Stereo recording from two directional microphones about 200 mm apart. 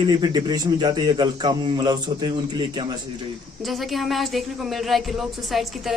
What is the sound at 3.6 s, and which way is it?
Speech, centre (ahead or behind).